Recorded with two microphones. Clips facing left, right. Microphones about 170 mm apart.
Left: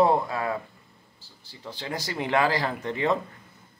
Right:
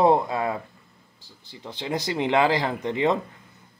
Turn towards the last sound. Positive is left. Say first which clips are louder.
# right 3 dB
turn(degrees=-20)  # may be behind; listen again after turning